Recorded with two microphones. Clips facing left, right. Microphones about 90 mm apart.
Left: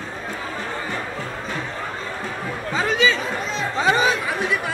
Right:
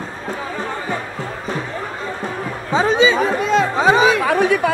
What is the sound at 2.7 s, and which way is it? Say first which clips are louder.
Speech: right 6 dB; 25° right (ahead or behind).